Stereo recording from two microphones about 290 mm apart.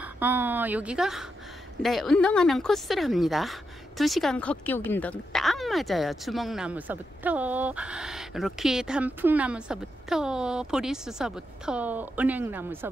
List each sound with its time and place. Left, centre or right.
0.0 s speech: centre